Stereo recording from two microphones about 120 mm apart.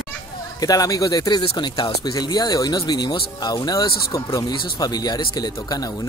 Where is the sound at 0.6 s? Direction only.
30° left (ahead or behind).